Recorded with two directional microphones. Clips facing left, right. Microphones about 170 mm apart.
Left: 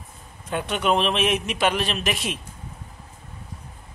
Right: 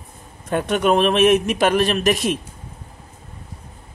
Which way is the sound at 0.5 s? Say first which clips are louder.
Right 5 dB; 45° right (ahead or behind).